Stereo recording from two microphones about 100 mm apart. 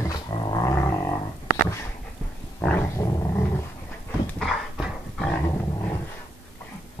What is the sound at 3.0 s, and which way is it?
Dog, 35° left (ahead or behind).